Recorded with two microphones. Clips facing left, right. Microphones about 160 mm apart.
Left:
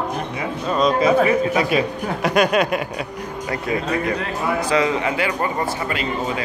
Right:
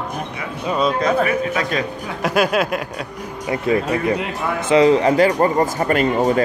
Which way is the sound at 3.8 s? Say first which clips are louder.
Right 2 dB; 15° right (ahead or behind).